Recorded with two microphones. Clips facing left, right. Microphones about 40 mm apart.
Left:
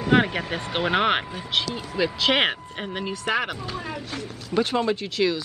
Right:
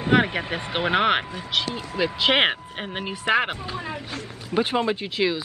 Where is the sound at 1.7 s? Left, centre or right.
Right.